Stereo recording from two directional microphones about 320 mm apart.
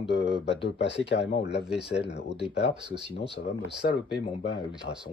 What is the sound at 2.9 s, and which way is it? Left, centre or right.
Speech, centre.